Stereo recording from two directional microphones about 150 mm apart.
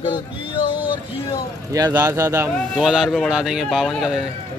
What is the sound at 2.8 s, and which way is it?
Speech, 5° right (ahead or behind).